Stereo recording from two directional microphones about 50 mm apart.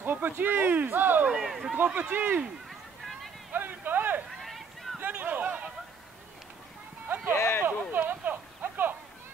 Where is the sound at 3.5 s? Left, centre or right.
Right.